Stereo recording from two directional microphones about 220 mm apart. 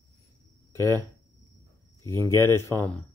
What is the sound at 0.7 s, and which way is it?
Speech, 10° left (ahead or behind).